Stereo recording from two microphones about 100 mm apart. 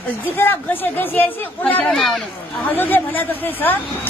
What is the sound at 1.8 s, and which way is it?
Speech, 5° left (ahead or behind).